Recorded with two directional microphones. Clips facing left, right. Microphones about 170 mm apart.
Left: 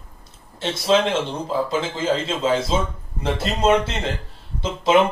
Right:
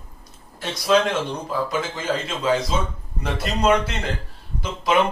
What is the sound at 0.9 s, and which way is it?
A man's voice, 25° left (ahead or behind).